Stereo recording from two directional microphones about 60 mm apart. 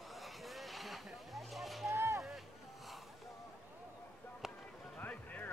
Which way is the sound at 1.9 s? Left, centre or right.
Right.